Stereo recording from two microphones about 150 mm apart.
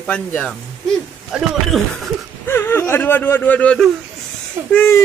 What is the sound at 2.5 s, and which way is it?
Speech, 15° left (ahead or behind).